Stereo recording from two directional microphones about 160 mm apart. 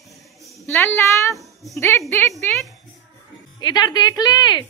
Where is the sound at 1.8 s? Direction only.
15° left (ahead or behind).